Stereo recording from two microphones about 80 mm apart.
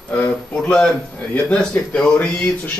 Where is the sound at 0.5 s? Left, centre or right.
Centre.